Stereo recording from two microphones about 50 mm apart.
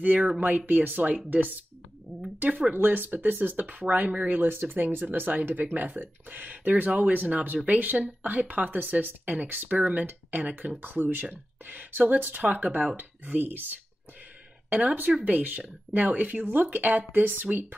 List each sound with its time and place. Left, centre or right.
0.0 s speech: right
10.8 s speech: right